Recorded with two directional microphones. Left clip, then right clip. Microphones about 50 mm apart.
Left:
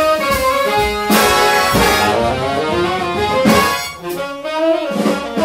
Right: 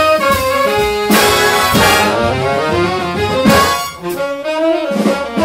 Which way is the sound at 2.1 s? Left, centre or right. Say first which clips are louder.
Right 2 dB; centre.